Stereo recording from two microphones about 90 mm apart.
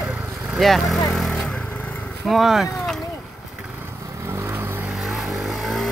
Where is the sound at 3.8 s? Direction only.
30° right (ahead or behind).